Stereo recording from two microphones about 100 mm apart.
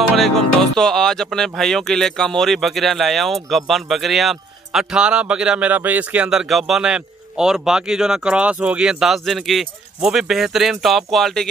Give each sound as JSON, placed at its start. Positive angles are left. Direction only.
{"t": 0.2, "sound": "speech", "side_deg": 5}